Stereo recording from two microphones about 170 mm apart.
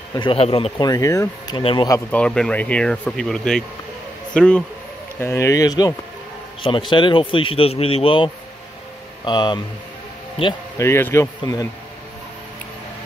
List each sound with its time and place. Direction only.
0.1 s speech: 30° left (ahead or behind)
0.8 s speech: 20° left (ahead or behind)
1.6 s speech: 30° left (ahead or behind)
2.0 s a man's voice: 5° left (ahead or behind)
5.2 s speech: 15° left (ahead or behind)
10.8 s speech: 15° left (ahead or behind)